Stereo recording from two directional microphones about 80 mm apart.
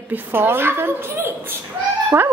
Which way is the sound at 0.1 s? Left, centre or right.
Right.